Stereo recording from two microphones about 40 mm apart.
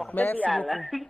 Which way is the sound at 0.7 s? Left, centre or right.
Centre.